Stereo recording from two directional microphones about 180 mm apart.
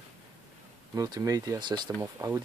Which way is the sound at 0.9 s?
20° right (ahead or behind).